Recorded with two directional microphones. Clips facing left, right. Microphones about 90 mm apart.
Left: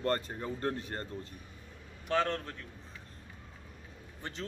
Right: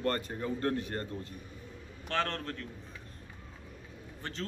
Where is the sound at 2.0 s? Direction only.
10° left (ahead or behind).